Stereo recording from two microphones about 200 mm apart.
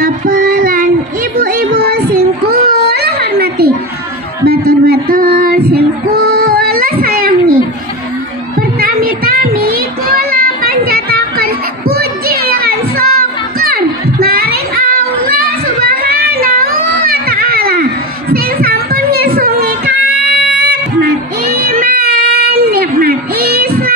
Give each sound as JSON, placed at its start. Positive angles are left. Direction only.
{"t": 0.0, "sound": "child singing", "side_deg": -45}
{"t": 1.3, "sound": "a sound", "side_deg": -45}
{"t": 4.5, "sound": "child singing", "side_deg": -50}
{"t": 18.3, "sound": "children playing", "side_deg": -50}
{"t": 21.0, "sound": "child singing", "side_deg": -50}